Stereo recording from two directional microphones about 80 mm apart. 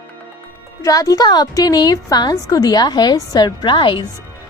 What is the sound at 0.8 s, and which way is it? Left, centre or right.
Speech, left.